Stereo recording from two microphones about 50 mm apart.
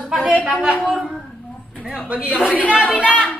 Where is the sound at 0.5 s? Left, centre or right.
Right.